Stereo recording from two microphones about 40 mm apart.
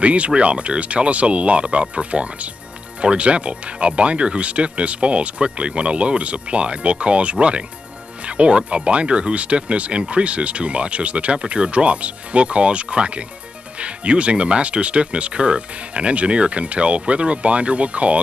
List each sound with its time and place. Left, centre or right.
0.0 s speech: right